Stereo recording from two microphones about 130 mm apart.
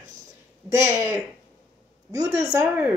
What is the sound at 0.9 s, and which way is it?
Speech, 25° right (ahead or behind).